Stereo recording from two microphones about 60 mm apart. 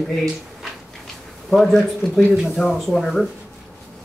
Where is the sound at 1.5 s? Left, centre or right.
Centre.